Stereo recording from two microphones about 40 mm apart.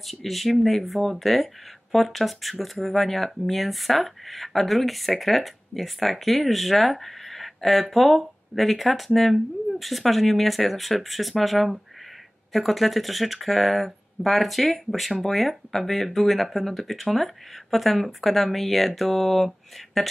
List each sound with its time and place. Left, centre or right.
0.0 s speech: centre